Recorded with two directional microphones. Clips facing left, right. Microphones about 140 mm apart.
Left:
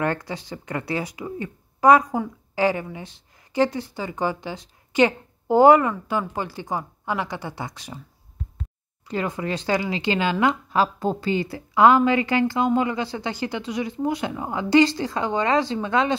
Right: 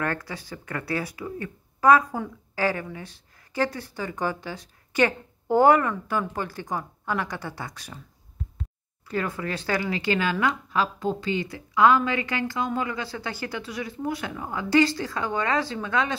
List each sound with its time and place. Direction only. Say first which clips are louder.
0.0 s a woman's voice: left 4 dB; 25° left (ahead or behind)
9.0 s speech: left 2 dB; 20° left (ahead or behind)